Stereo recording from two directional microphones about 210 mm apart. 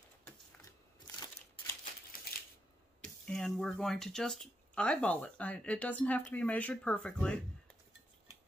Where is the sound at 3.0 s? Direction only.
5° left (ahead or behind).